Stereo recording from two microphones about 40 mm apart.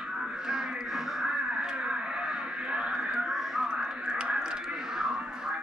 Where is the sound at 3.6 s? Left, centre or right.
Centre.